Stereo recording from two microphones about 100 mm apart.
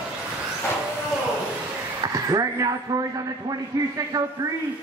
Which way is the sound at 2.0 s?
35° right (ahead or behind).